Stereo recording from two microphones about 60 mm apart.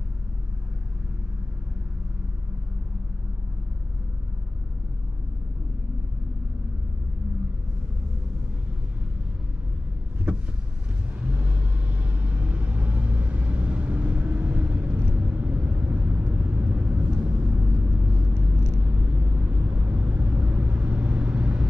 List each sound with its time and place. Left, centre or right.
11.1 s vehicle: right